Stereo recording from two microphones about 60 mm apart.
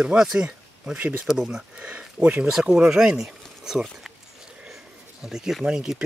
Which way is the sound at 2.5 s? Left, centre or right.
Centre.